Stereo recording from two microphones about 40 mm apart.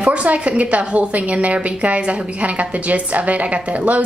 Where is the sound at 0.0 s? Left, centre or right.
Right.